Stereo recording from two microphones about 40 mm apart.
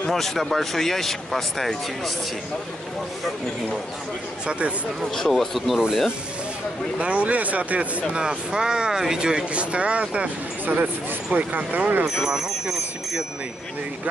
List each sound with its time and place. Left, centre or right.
0.1 s speech: centre
4.5 s speech: right
5.1 s speech: centre
7.0 s speech: right
8.1 s speech: right
11.3 s speech: right
12.2 s speech: centre